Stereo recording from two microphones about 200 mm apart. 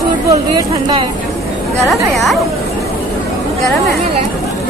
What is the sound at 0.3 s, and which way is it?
Speech, 20° right (ahead or behind).